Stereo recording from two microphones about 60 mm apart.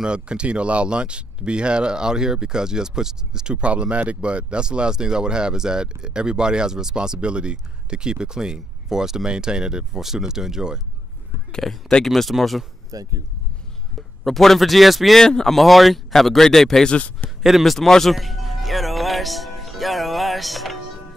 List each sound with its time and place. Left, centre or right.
0.0 s speech: centre
11.5 s speech: centre
12.9 s speech: right
14.2 s speech: centre
15.1 s speech: centre
17.4 s a man's voice: centre
17.7 s music: centre